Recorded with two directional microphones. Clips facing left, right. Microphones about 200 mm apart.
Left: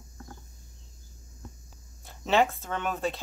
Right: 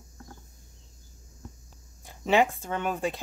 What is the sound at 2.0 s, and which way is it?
Speech, 15° right (ahead or behind).